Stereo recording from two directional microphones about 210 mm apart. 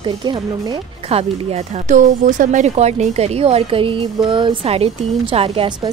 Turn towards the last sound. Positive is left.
turn(degrees=-25)  # may be behind; listen again after turning